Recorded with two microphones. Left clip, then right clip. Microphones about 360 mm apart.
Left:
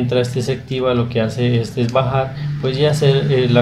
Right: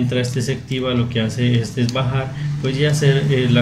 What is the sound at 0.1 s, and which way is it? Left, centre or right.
Speech, centre.